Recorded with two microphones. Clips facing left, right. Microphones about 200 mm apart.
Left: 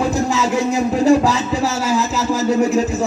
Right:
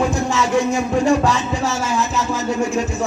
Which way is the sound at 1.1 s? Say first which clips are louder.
Left 3 dB; 5° left (ahead or behind).